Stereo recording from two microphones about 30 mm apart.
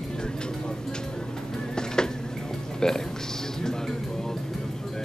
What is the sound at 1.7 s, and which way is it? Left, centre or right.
Music, left.